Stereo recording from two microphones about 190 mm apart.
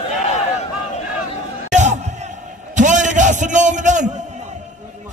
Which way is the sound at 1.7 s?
40° right (ahead or behind).